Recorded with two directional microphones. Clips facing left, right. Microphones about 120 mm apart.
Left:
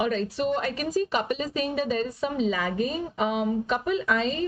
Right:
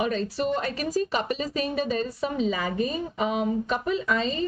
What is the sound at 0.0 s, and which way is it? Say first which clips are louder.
A woman's voice: even; 40° right (ahead or behind).